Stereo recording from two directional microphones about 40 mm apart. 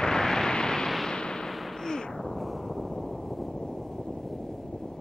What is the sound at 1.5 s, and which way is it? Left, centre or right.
Gunshot, centre.